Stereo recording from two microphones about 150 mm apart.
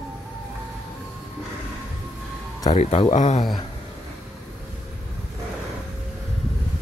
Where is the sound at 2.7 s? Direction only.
50° left (ahead or behind).